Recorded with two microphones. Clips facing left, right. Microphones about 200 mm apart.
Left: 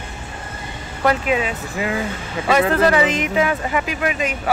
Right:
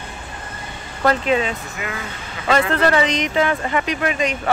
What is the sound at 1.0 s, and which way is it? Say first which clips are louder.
Speech: right 1 dB; 5° left (ahead or behind).